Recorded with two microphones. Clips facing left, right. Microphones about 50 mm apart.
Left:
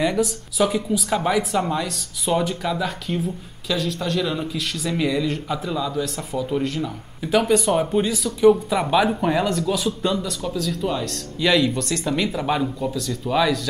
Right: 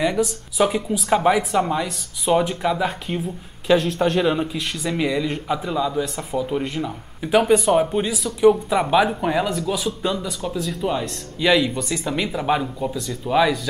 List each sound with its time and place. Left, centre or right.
0.6 s speech: centre
3.6 s speech: right; by 13.6 s centre